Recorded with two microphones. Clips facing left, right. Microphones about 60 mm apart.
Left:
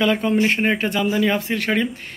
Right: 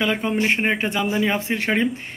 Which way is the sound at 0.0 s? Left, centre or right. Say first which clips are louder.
Left 3 dB; centre.